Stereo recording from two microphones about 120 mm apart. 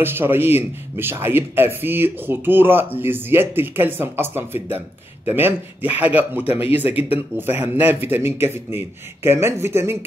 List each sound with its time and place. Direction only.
0.0 s a man's voice: 20° right (ahead or behind)